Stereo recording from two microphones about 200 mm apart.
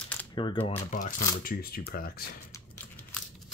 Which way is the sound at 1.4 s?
50° left (ahead or behind).